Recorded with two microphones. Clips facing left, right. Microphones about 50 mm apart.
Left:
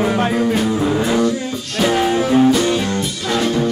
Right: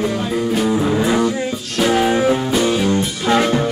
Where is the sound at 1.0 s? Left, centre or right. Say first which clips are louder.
Even; centre.